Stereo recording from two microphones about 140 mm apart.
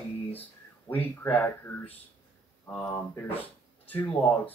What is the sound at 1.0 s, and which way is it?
Speech, 10° left (ahead or behind).